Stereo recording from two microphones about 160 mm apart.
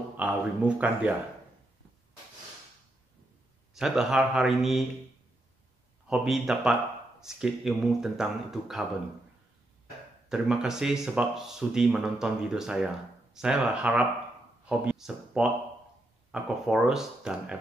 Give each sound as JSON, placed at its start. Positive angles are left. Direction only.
{"t": 0.2, "sound": "a man's voice", "side_deg": -10}
{"t": 3.7, "sound": "speech", "side_deg": 0}
{"t": 6.0, "sound": "speech", "side_deg": -5}
{"t": 10.3, "sound": "speech", "side_deg": -5}